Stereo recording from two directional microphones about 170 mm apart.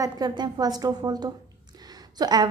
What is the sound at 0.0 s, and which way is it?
A woman's voice, 25° right (ahead or behind).